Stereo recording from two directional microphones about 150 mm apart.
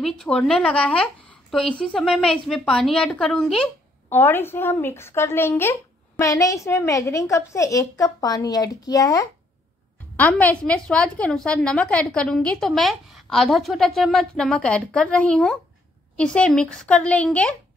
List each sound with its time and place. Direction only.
0.0 s a woman's voice: 5° left (ahead or behind)
4.1 s a woman's voice: 15° left (ahead or behind)
10.1 s a woman's voice: 10° left (ahead or behind)